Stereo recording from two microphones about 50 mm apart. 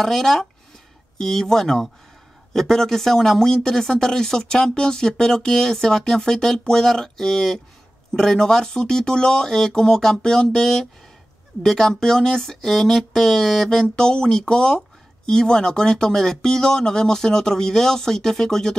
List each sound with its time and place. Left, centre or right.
0.0 s speech: centre
13.9 s speech: centre